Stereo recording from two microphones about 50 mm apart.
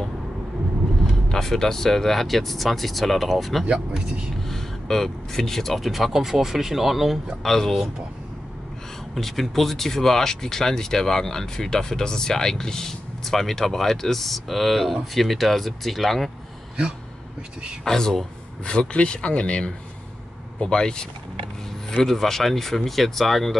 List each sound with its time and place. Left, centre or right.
1.3 s speech: centre
3.7 s speech: centre
4.5 s speech: centre
5.9 s speech: centre
7.4 s speech: centre
9.1 s speech: centre
17.8 s speech: centre
22.0 s speech: centre